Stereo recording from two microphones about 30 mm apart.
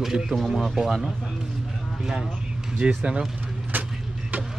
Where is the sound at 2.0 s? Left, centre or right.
Centre.